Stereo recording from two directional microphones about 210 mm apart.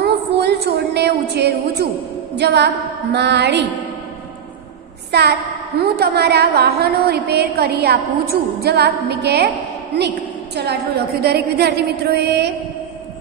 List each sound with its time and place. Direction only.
0.0 s a sound: 50° right (ahead or behind)
1.8 s a woman's voice: 50° right (ahead or behind)
5.1 s a woman's voice: 50° right (ahead or behind)